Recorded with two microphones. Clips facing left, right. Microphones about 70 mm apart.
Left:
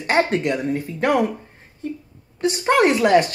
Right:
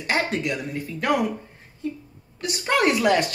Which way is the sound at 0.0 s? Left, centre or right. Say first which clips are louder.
Left 5 dB; left.